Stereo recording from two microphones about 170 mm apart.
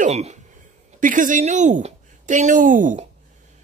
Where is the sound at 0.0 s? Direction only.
40° right (ahead or behind).